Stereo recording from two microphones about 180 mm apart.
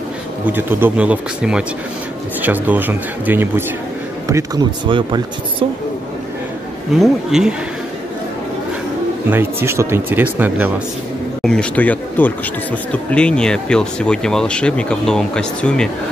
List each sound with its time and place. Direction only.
0.5 s speech: 10° right (ahead or behind)
4.8 s speech: 30° right (ahead or behind)
7.0 s speech: centre (ahead or behind)
9.3 s speech: 10° right (ahead or behind)
11.4 s speech: 5° left (ahead or behind)